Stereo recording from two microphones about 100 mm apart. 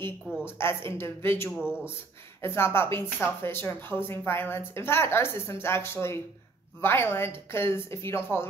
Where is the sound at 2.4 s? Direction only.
25° left (ahead or behind).